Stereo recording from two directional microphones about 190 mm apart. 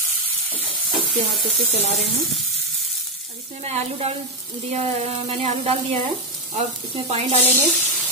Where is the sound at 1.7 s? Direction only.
35° right (ahead or behind).